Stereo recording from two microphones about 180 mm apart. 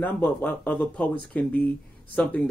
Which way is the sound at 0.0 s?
10° left (ahead or behind).